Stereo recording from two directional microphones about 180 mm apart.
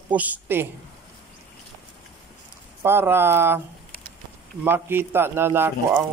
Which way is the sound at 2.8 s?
10° right (ahead or behind).